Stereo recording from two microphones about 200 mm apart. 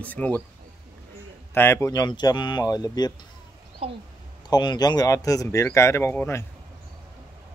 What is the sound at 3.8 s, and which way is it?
Speech, 30° right (ahead or behind).